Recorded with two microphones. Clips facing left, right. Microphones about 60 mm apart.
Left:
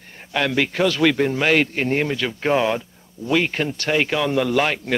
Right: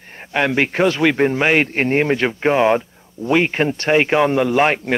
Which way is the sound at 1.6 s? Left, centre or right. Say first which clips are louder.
Right 4 dB; right.